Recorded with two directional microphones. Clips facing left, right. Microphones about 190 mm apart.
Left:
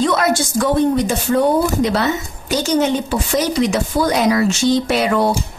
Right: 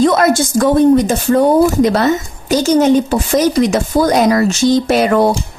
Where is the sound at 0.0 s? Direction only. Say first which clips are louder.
Right 5 dB; 45° right (ahead or behind).